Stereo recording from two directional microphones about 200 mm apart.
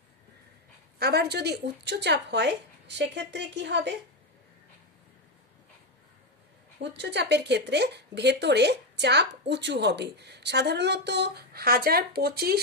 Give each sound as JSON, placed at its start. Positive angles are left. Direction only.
{"t": 0.9, "sound": "speech", "side_deg": -55}
{"t": 7.0, "sound": "speech", "side_deg": -60}